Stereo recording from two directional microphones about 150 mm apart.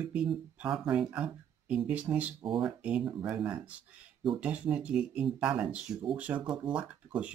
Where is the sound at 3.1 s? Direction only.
20° right (ahead or behind).